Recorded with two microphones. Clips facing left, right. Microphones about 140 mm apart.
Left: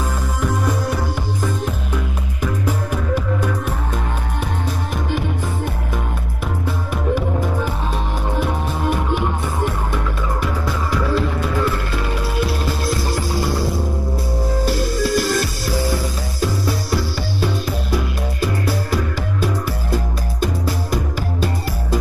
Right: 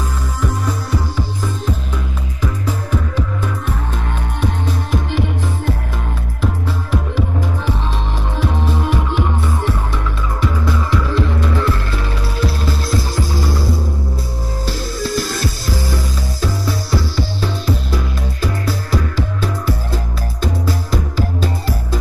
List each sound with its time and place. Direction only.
6.4 s music: 55° left (ahead or behind)
14.7 s music: 55° left (ahead or behind)